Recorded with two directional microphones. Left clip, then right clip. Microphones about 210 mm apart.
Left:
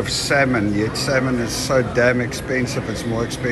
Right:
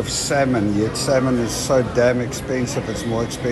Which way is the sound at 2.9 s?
Centre (ahead or behind).